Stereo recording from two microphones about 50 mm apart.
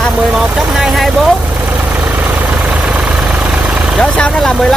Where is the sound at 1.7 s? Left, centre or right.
Centre.